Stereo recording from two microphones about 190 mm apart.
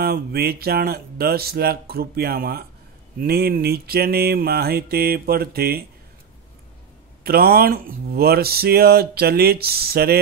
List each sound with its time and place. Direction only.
0.0 s speech: 55° right (ahead or behind)
7.2 s speech: 55° right (ahead or behind)